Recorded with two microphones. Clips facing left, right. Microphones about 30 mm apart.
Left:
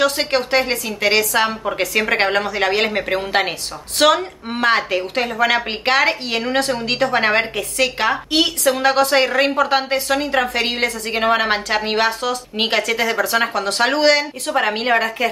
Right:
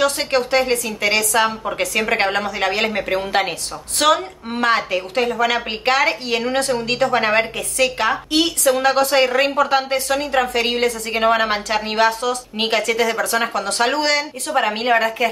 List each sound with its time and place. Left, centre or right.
0.0 s a woman's voice: left
4.0 s a woman's voice: left
11.1 s a woman's voice: centre